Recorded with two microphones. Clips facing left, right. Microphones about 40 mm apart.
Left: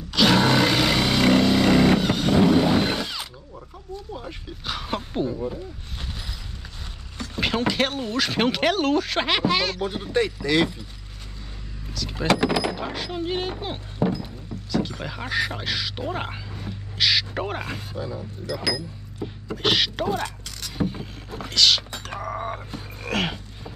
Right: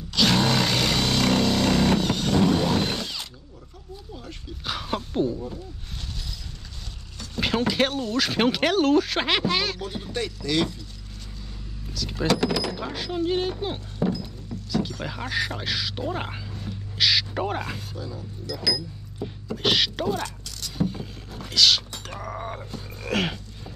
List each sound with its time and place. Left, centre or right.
0.1 s a sound: centre
7.3 s a sound: centre
7.9 s speech: centre
8.2 s speech: centre
9.8 s speech: centre
11.9 s speech: centre
12.3 s speech: left
13.9 s music: centre
14.7 s speech: centre; by 18.9 s left
19.2 s speech: centre
20.2 s vehicle: left
21.0 s speech: centre